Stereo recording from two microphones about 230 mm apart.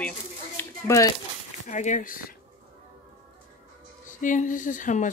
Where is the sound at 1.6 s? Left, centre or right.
Left.